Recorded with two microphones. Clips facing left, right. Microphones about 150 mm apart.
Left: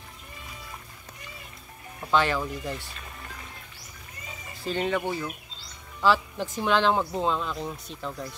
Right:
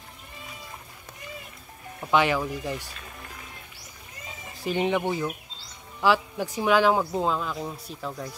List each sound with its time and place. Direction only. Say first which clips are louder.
2.0 s speech: right 2 dB; 15° right (ahead or behind)
4.6 s speech: right 2 dB; 15° right (ahead or behind)